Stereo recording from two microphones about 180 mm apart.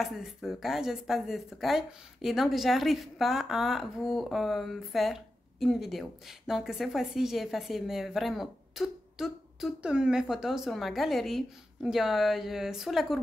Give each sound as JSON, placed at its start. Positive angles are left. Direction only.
{"t": 0.0, "sound": "speech", "side_deg": 0}